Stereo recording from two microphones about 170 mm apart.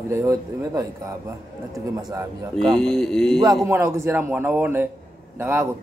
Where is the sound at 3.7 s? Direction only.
15° right (ahead or behind).